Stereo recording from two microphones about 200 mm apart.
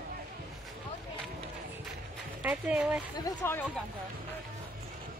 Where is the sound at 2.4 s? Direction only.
5° right (ahead or behind).